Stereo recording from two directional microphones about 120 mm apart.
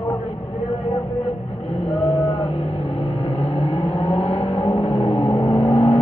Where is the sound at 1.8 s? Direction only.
55° left (ahead or behind).